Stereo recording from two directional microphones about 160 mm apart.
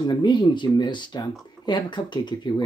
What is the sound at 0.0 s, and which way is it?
Speech, 25° left (ahead or behind).